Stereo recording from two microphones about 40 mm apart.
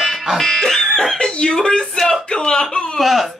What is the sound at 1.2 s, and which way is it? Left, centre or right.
A man's voice, left.